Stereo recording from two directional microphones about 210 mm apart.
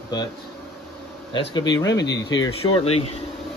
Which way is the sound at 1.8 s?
60° left (ahead or behind).